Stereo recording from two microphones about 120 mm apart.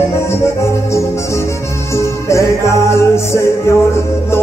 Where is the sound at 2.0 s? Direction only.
25° left (ahead or behind).